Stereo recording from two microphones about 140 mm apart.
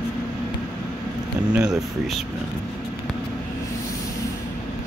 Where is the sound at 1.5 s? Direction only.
5° right (ahead or behind).